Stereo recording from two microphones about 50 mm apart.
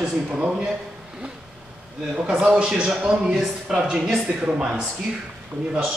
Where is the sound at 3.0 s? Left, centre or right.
Centre.